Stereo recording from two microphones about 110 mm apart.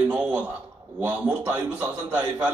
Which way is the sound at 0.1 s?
15° right (ahead or behind).